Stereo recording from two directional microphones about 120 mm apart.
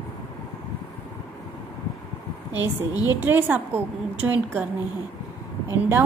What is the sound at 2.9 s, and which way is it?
Speech, 30° left (ahead or behind).